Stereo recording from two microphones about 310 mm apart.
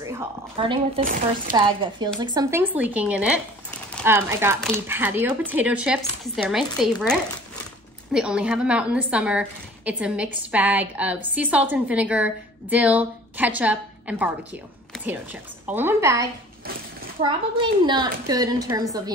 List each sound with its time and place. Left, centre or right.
0.0 s a woman's voice: centre
15.6 s a child's voice: centre